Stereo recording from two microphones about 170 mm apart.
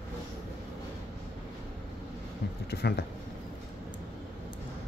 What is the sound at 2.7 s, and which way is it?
Speech, 70° left (ahead or behind).